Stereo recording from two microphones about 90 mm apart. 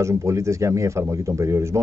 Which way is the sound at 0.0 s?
35° right (ahead or behind).